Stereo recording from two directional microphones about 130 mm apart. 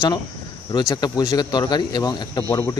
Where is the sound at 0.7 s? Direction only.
30° left (ahead or behind).